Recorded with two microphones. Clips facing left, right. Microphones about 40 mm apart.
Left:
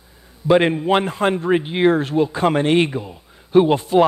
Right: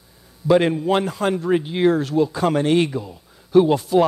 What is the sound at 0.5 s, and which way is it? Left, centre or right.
A man's voice, left.